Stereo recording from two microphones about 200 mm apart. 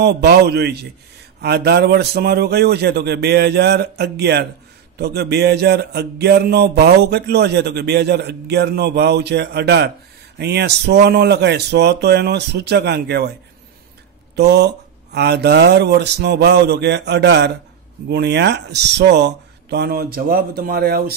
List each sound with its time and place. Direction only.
0.0 s speech: 55° right (ahead or behind)
14.3 s speech: 55° right (ahead or behind)